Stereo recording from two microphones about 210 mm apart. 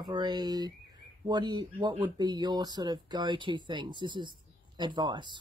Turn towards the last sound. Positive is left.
turn(degrees=-20)  # may be behind; listen again after turning